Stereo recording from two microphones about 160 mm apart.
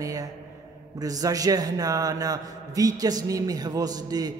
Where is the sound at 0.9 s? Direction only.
25° right (ahead or behind).